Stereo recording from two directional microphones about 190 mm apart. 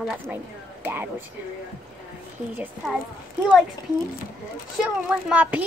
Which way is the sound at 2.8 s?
Centre (ahead or behind).